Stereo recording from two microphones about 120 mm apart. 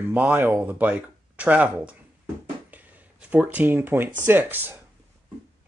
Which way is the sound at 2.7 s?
10° right (ahead or behind).